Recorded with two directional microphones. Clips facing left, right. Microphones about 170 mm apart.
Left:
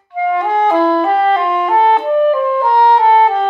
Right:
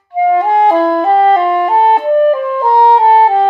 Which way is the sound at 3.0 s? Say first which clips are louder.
Right 2 dB; 35° right (ahead or behind).